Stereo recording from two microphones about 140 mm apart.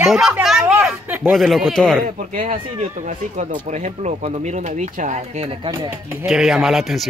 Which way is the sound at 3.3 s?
60° right (ahead or behind).